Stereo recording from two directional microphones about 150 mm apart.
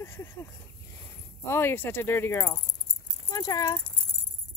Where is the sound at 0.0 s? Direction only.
15° left (ahead or behind).